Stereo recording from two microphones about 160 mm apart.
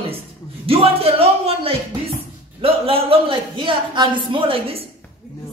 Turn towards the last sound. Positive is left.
turn(degrees=-35)  # may be behind; listen again after turning